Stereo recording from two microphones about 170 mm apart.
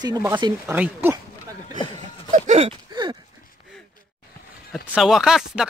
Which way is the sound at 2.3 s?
45° right (ahead or behind).